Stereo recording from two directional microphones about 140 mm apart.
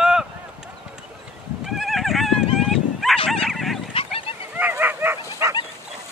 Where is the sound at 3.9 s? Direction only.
40° left (ahead or behind).